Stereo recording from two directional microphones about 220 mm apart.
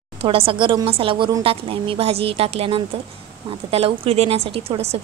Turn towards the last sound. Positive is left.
turn(degrees=-30)  # may be behind; listen again after turning